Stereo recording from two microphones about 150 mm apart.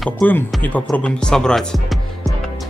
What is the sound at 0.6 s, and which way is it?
Speech, 10° left (ahead or behind).